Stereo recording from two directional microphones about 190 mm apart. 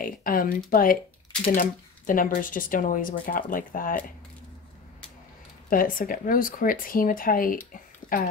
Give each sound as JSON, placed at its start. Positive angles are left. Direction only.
{"t": 0.0, "sound": "speech", "side_deg": 45}
{"t": 5.7, "sound": "speech", "side_deg": 50}